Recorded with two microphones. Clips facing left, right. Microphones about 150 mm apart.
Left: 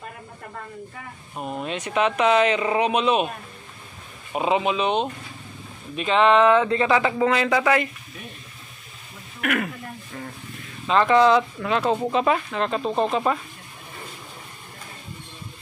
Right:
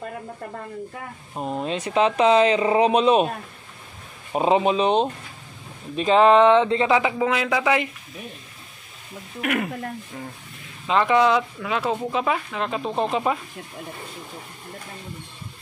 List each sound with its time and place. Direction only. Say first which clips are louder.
1.3 s speech: right 3 dB; 25° right (ahead or behind); by 7.7 s 5° right (ahead or behind)
9.4 s speech: even; 25° right (ahead or behind)
10.9 s speech: left 2 dB; 10° right (ahead or behind)